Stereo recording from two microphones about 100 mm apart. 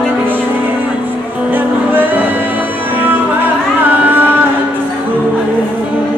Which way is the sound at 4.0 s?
20° right (ahead or behind).